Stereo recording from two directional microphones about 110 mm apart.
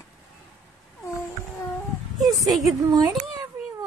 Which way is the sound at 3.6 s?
20° right (ahead or behind).